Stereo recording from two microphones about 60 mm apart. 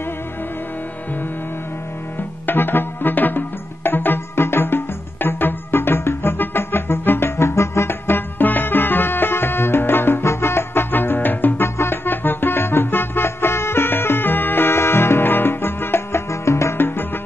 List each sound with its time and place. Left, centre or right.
2.4 s music: left